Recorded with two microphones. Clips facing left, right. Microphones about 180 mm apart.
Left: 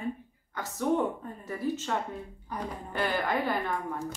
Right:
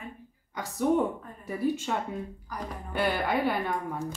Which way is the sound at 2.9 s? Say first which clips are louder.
Right 2 dB; 10° right (ahead or behind).